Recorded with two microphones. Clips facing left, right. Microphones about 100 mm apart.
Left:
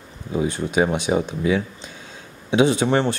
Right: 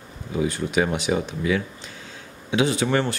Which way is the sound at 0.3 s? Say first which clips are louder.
Left 2 dB; 25° left (ahead or behind).